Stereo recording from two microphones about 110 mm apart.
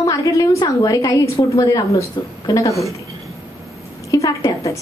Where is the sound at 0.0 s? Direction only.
30° left (ahead or behind).